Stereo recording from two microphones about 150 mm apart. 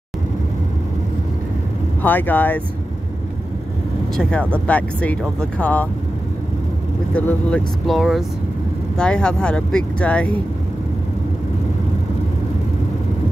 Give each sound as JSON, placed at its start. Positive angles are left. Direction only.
{"t": 2.0, "sound": "speech", "side_deg": 10}
{"t": 4.2, "sound": "speech", "side_deg": 5}
{"t": 7.2, "sound": "speech", "side_deg": 10}